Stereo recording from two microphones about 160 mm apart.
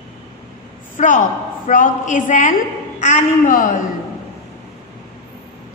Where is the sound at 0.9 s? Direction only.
55° left (ahead or behind).